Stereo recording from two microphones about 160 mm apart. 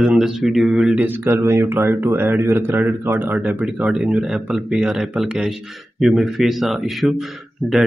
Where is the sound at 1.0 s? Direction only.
15° right (ahead or behind).